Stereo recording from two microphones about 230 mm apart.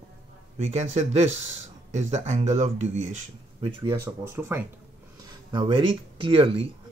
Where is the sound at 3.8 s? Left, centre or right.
Centre.